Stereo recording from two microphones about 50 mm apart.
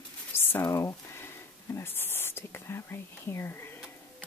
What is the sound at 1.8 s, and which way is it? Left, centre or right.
Speech, left.